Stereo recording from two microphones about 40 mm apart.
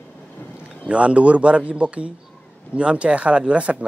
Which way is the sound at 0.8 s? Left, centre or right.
Right.